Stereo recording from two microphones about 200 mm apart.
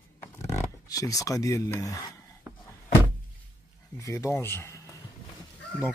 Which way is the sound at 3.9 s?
15° left (ahead or behind).